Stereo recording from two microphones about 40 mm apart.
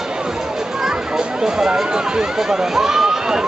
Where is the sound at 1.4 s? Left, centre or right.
Centre.